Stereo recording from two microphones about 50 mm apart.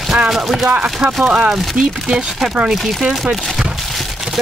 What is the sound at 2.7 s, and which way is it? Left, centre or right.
Speech, centre.